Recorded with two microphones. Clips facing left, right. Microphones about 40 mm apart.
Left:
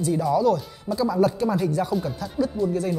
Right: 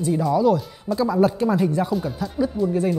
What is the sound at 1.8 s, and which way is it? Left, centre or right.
Speech, centre.